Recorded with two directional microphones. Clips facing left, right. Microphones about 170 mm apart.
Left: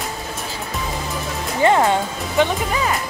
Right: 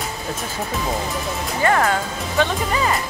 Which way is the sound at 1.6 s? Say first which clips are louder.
Left 3 dB; 20° left (ahead or behind).